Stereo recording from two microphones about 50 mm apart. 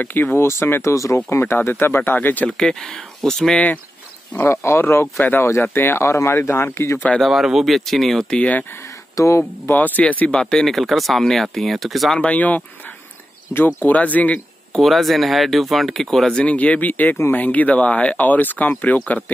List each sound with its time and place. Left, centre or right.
0.0 s speech: left
0.4 s speech: left
0.8 s speech: left
1.5 s speech: left
2.4 s speech: centre
4.5 s speech: left
7.2 s speech: centre
9.2 s speech: left
9.7 s speech: left
10.3 s speech: centre
12.2 s speech: left
13.7 s speech: left
14.8 s speech: centre
16.3 s speech: left